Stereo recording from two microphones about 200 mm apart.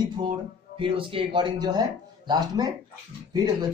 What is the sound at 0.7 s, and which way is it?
Speech, 25° right (ahead or behind).